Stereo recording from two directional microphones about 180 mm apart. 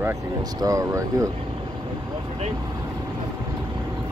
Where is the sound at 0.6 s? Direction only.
20° right (ahead or behind).